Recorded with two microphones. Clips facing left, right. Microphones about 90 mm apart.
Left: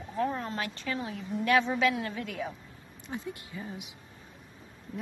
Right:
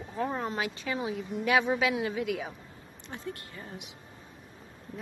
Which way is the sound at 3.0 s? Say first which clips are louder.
Left 2 dB; 5° left (ahead or behind).